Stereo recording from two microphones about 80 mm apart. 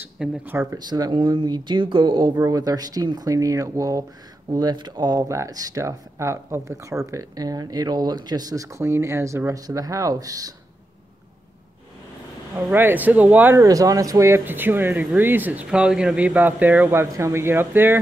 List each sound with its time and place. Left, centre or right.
0.2 s speech: centre
0.7 s speech: right
2.4 s speech: right
4.5 s speech: right
5.3 s speech: right
9.5 s speech: right
12.7 s speech: right
13.6 s speech: right
14.4 s speech: right
15.7 s speech: centre; by 18.0 s right